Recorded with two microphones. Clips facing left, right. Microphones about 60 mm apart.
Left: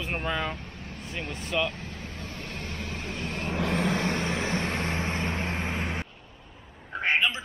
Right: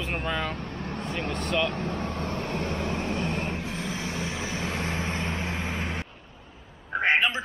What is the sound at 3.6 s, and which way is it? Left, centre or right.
Vehicle, left.